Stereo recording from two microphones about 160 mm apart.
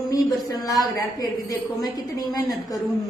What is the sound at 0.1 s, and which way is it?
Speech, 20° left (ahead or behind).